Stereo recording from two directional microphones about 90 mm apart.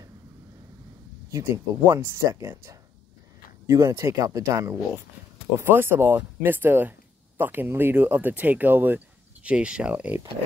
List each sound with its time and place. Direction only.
1.3 s speech: 35° right (ahead or behind); by 10.1 s 15° right (ahead or behind)